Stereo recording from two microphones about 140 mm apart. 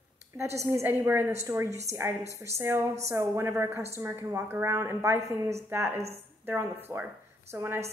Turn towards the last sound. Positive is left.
turn(degrees=-20)  # may be behind; listen again after turning